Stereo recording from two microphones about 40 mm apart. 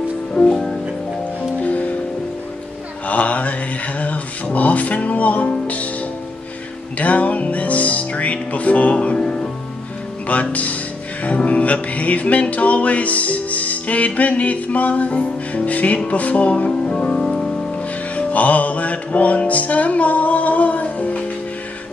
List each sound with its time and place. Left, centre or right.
0.5 s music: centre
1.6 s music: left
3.1 s mantra: left
4.0 s music: left
7.0 s music: left
10.2 s speech: left
11.2 s music: left
16.1 s speech: left
18.1 s music: left